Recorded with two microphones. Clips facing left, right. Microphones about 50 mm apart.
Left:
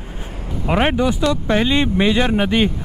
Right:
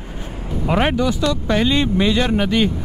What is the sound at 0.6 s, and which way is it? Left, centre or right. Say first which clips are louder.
Speech: left 1 dB; centre.